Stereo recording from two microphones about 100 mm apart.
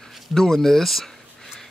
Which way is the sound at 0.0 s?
Centre (ahead or behind).